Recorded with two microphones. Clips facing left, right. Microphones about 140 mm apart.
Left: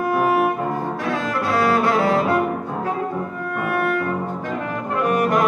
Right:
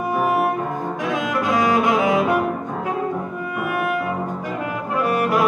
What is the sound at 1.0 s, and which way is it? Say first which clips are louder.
Bowed string instrument: right 3 dB; 15° right (ahead or behind).